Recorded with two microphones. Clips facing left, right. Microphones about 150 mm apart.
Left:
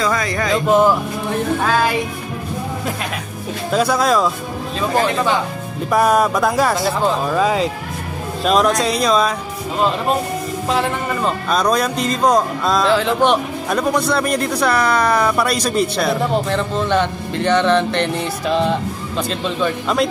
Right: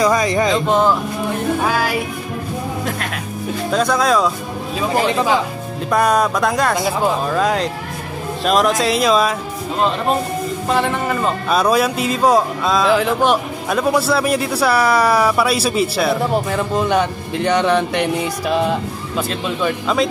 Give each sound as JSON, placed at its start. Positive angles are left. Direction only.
{"t": 0.0, "sound": "speech", "side_deg": -20}
{"t": 0.7, "sound": "speech", "side_deg": 10}
{"t": 1.7, "sound": "a man's voice", "side_deg": -10}
{"t": 3.7, "sound": "speech", "side_deg": 5}
{"t": 5.9, "sound": "speech", "side_deg": 5}
{"t": 10.7, "sound": "a man's voice", "side_deg": 0}